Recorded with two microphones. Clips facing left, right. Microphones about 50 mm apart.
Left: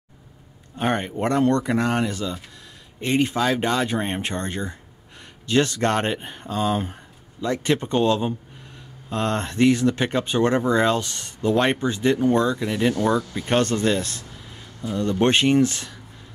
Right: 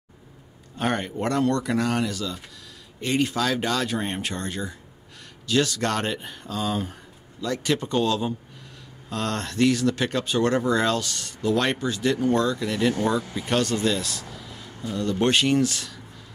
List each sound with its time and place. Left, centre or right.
0.7 s a man's voice: centre
13.5 s speech: left